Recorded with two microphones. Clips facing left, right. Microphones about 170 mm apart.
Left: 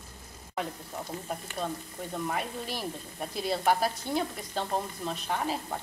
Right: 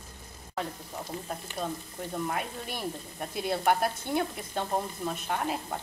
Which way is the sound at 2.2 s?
Centre (ahead or behind).